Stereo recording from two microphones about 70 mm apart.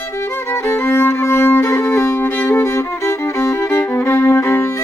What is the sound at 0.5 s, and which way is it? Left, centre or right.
Violin, left.